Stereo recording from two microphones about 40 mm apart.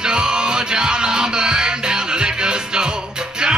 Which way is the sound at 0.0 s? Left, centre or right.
Centre.